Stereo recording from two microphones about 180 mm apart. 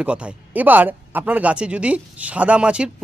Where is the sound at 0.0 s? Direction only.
5° right (ahead or behind).